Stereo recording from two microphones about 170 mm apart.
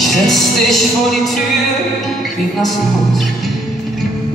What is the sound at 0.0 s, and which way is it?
Music, centre (ahead or behind).